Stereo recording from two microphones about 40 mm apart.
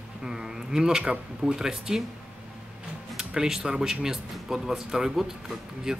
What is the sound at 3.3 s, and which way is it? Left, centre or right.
Speech, centre.